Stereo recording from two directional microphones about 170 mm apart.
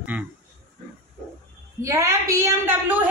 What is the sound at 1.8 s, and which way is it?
A woman's voice, 20° right (ahead or behind).